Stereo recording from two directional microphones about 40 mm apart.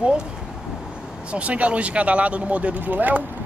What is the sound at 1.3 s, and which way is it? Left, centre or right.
Speech, right.